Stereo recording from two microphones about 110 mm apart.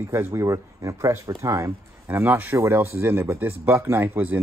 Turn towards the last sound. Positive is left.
turn(degrees=-15)  # may be behind; listen again after turning